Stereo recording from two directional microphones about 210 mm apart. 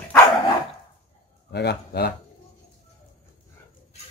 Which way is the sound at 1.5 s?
50° left (ahead or behind).